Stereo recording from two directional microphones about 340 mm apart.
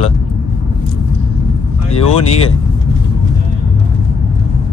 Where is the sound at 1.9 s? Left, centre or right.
Centre.